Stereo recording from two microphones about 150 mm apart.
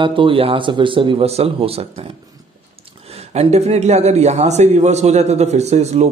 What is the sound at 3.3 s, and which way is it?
A man's voice, 45° right (ahead or behind).